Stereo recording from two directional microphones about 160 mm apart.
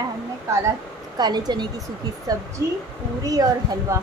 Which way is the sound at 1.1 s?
25° right (ahead or behind).